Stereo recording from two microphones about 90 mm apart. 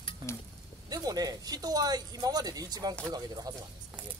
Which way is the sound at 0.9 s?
45° right (ahead or behind).